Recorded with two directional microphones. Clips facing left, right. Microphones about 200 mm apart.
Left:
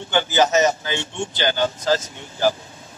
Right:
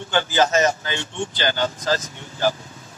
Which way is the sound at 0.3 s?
20° left (ahead or behind).